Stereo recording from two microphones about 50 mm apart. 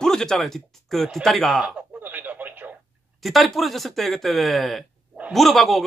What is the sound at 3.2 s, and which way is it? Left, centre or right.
Speech, centre.